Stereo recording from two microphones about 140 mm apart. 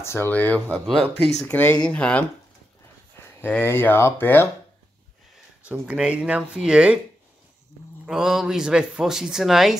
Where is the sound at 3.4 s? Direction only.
15° left (ahead or behind).